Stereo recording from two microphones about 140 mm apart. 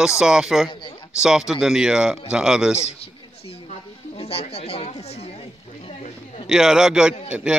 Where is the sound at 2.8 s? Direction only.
45° left (ahead or behind).